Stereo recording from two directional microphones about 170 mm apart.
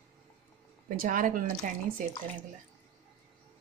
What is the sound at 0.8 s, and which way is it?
Speech, 55° right (ahead or behind).